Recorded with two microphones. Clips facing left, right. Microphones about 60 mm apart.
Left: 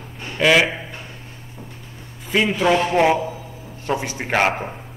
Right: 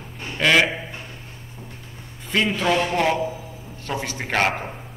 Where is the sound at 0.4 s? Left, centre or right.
Centre.